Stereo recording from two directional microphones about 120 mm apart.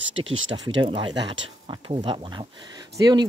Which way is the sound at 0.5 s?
40° right (ahead or behind).